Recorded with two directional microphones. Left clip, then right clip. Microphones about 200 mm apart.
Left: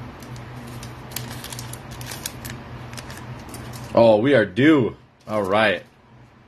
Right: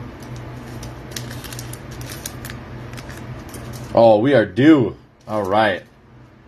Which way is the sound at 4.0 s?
50° left (ahead or behind).